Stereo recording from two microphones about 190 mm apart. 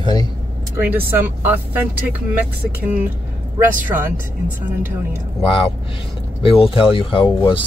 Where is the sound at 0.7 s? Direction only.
10° right (ahead or behind).